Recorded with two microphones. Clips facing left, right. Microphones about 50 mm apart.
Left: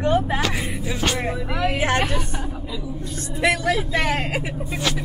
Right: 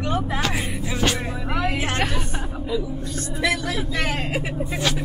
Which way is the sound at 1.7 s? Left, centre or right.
Left.